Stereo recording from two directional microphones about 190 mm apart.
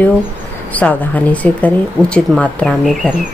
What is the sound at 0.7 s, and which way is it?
Speech, 10° left (ahead or behind).